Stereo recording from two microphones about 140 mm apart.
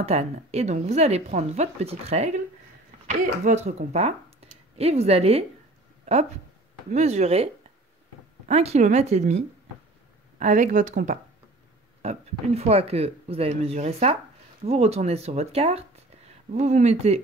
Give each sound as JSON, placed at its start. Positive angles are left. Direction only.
{"t": 0.0, "sound": "a woman's voice", "side_deg": -50}
{"t": 6.9, "sound": "a woman's voice", "side_deg": -55}
{"t": 10.4, "sound": "speech", "side_deg": -60}
{"t": 12.0, "sound": "a woman's voice", "side_deg": -50}